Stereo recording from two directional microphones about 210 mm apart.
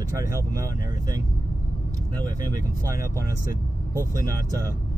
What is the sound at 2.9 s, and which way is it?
Speech, 15° right (ahead or behind).